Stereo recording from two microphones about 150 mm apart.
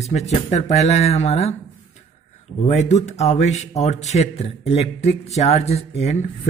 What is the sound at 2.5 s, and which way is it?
Speech, 50° left (ahead or behind).